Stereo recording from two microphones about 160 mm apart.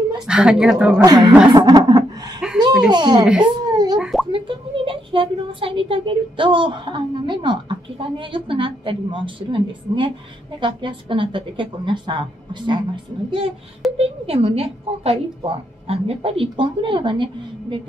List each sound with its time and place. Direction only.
0.3 s a woman's voice: 5° right (ahead or behind)
1.0 s speech: 25° right (ahead or behind)
1.5 s chuckle: 25° right (ahead or behind)
2.9 s speech: 30° right (ahead or behind)
3.7 s plop: 25° right (ahead or behind)
4.0 s plop: centre (ahead or behind)
4.3 s a woman's voice: 30° right (ahead or behind)